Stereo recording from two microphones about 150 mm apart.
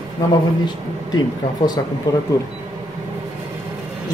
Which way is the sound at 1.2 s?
25° left (ahead or behind).